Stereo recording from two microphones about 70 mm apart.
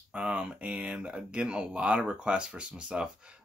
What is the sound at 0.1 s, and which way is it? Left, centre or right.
Speech, centre.